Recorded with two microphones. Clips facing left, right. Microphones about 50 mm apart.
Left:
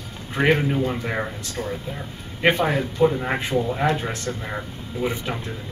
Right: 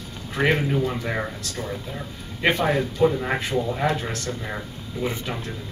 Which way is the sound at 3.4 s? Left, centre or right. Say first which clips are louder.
Left 2 dB; centre.